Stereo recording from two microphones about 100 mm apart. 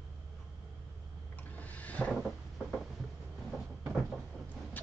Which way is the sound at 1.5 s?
15° left (ahead or behind).